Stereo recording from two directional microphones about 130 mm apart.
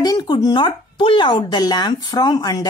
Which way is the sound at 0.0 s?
30° left (ahead or behind).